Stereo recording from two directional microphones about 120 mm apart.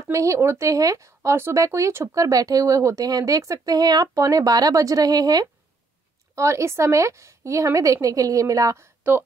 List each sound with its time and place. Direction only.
0.1 s a woman's voice: 25° right (ahead or behind)